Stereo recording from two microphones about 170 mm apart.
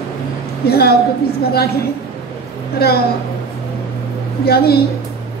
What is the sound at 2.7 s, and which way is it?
Speech, 65° left (ahead or behind).